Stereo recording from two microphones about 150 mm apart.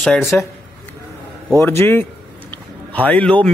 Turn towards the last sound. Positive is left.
turn(degrees=10)  # may be behind; listen again after turning